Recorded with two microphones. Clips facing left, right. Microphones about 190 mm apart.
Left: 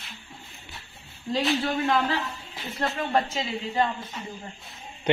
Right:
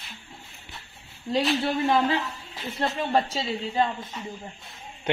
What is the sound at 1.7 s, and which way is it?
Speech, 25° right (ahead or behind).